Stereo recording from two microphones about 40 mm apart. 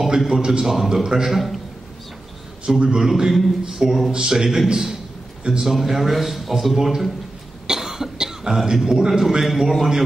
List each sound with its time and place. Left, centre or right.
0.3 s a man's voice: centre
1.3 s a man's voice: centre
2.6 s a man's voice: right
5.7 s a man's voice: centre
7.6 s cough: centre
8.8 s a man's voice: centre
9.4 s a man's voice: centre